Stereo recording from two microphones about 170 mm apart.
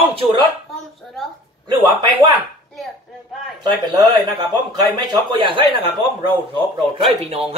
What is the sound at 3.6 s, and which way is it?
Speech, 25° right (ahead or behind).